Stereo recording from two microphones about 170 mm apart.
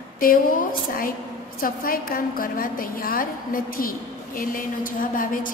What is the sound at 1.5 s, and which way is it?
A woman's voice, 60° left (ahead or behind).